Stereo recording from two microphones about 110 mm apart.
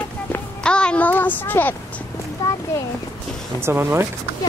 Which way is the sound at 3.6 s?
20° right (ahead or behind).